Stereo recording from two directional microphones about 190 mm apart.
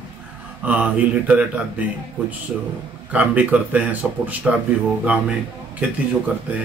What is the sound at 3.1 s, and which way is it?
Speech, 5° right (ahead or behind).